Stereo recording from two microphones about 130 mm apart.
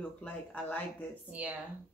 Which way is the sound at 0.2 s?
10° left (ahead or behind).